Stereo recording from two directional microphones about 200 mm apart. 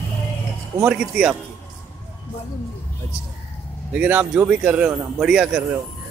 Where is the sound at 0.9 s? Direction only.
5° right (ahead or behind).